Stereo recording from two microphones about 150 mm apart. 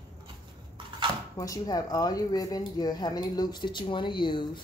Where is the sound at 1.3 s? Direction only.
20° left (ahead or behind).